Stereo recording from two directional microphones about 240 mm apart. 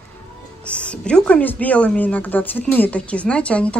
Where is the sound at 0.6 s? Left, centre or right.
Centre.